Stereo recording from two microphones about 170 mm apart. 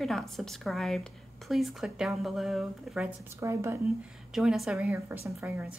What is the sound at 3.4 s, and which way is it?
Speech, 15° right (ahead or behind).